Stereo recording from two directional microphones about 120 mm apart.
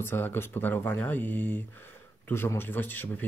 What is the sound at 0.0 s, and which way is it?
Speech, 20° left (ahead or behind).